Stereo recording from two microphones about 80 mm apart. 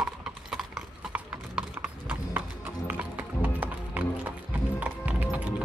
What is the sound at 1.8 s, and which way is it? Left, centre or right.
Clip-clop, right.